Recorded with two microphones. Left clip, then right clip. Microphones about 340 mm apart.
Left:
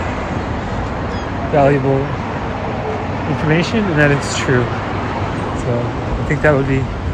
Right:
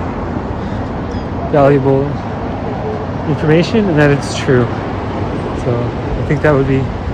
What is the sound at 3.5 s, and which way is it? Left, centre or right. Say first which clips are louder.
Speech: right 5 dB; centre.